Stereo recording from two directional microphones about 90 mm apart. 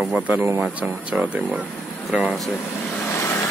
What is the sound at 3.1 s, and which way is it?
Vehicle, 30° left (ahead or behind).